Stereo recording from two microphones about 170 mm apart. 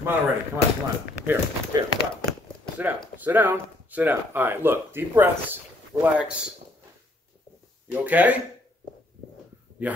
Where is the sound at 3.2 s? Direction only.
10° right (ahead or behind).